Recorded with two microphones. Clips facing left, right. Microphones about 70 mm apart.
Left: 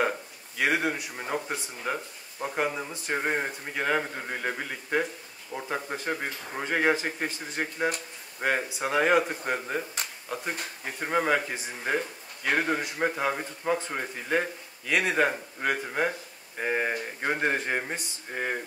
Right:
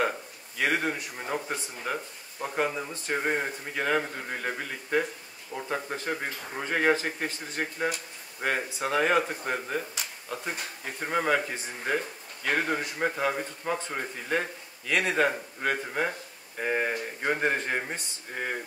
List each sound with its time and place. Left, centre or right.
0.6 s a man's voice: centre
11.0 s a man's voice: centre